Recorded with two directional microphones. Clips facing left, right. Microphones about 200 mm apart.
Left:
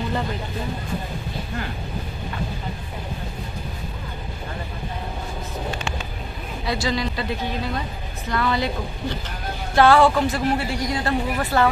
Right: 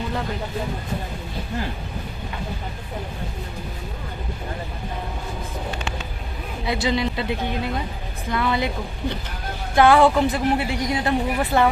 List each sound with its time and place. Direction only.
6.6 s speech: 20° right (ahead or behind)
9.8 s speech: 15° right (ahead or behind)